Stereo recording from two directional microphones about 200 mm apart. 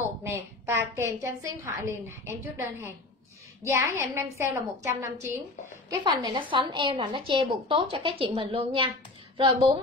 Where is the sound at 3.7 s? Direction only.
15° right (ahead or behind).